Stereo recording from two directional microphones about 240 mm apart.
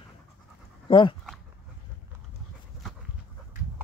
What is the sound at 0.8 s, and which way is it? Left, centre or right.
Dog, left.